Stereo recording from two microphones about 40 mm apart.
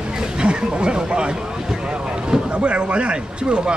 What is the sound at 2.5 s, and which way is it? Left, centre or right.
Speech, right.